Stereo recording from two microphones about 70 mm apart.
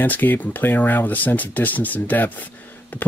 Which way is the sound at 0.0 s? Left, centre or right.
Left.